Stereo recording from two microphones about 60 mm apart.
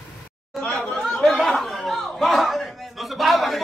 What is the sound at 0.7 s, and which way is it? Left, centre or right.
Chatter, left.